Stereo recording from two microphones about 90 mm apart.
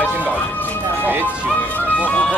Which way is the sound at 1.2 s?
20° left (ahead or behind).